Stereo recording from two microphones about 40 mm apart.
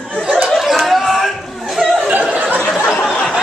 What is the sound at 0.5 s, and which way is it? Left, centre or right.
Chatter, centre.